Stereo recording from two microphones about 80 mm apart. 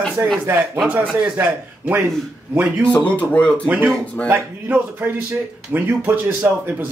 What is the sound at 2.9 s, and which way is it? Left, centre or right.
Speech, centre.